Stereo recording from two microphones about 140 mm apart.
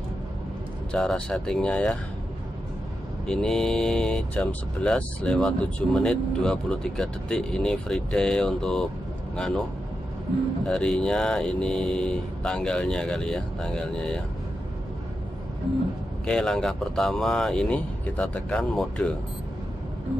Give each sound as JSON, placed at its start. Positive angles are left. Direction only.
{"t": 0.9, "sound": "speech", "side_deg": 5}
{"t": 3.3, "sound": "speech", "side_deg": 5}
{"t": 10.7, "sound": "speech", "side_deg": 5}
{"t": 16.3, "sound": "speech", "side_deg": 5}